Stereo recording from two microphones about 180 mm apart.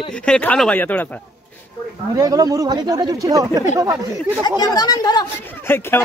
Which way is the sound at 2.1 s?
20° right (ahead or behind).